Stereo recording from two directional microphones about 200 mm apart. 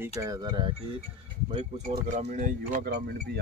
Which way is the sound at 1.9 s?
40° right (ahead or behind).